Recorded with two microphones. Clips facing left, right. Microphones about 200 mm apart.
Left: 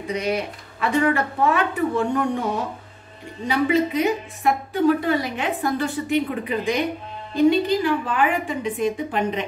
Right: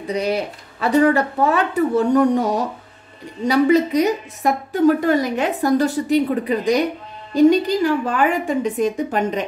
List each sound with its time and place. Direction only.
0.0 s a woman's voice: 35° right (ahead or behind)